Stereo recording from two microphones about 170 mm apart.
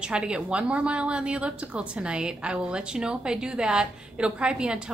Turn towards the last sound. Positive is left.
turn(degrees=-5)  # may be behind; listen again after turning